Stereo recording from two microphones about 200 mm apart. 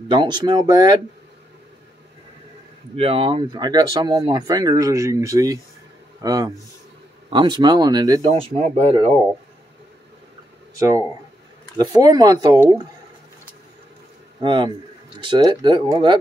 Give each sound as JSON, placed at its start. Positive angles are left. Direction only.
{"t": 0.1, "sound": "speech", "side_deg": -25}
{"t": 3.0, "sound": "speech", "side_deg": -30}
{"t": 10.8, "sound": "speech", "side_deg": -15}
{"t": 14.4, "sound": "speech", "side_deg": -25}